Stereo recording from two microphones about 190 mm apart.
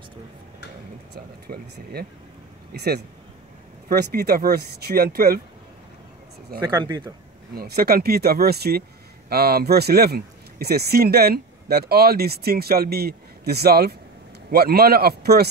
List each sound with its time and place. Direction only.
1.1 s speech: 55° right (ahead or behind)
6.7 s speech: 20° right (ahead or behind)
7.5 s speech: 55° right (ahead or behind)